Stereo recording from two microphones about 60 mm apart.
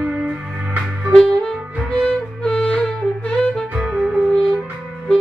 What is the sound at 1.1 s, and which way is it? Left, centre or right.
Music, centre.